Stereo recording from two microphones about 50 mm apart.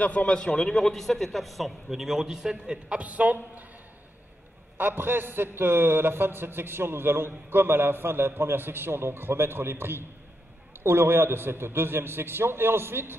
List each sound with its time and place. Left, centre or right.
0.0 s a man's voice: left; by 3.0 s centre
3.0 s a man's voice: right
4.7 s a man's voice: right